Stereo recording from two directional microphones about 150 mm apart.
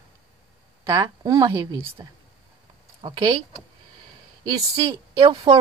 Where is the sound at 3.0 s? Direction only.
30° right (ahead or behind).